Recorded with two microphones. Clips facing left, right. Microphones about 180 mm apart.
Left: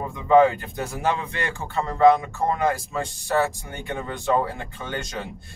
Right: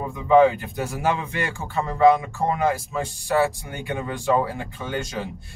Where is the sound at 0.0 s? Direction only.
5° right (ahead or behind).